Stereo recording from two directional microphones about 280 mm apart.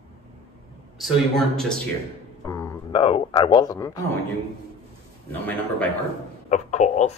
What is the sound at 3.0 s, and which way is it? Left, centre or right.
Speech, centre.